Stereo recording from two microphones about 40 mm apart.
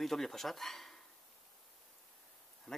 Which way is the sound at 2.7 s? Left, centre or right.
Centre.